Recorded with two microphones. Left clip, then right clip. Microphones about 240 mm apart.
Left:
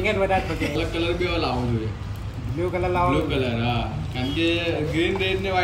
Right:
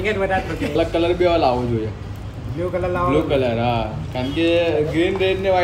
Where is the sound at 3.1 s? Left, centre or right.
Centre.